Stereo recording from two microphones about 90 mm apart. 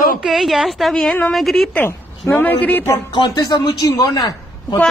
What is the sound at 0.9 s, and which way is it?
Speech, 15° left (ahead or behind).